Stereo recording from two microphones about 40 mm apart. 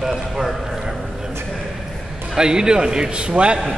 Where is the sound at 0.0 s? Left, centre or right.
Centre.